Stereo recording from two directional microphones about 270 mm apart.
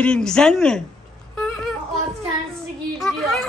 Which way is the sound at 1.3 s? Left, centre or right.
Centre.